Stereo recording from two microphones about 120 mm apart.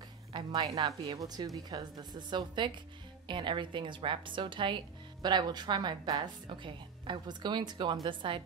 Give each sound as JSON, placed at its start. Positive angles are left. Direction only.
{"t": 0.3, "sound": "speech", "side_deg": -30}